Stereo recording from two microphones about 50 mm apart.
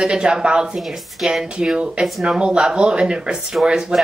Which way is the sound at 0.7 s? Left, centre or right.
Centre.